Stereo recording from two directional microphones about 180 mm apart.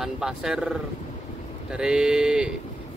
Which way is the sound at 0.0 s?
5° right (ahead or behind).